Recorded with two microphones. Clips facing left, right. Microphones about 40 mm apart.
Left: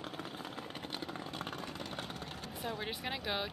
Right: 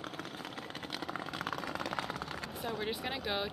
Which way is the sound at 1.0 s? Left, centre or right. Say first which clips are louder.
Right 6 dB; right.